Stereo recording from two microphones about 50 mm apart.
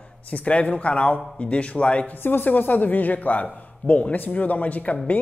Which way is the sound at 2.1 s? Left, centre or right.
Left.